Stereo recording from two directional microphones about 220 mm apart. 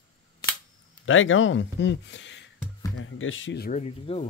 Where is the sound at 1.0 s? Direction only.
65° left (ahead or behind).